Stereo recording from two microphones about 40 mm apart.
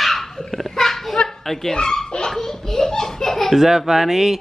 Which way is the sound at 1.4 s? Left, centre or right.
Centre.